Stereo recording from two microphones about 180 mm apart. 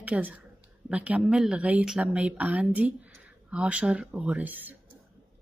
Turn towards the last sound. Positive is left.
turn(degrees=-10)  # may be behind; listen again after turning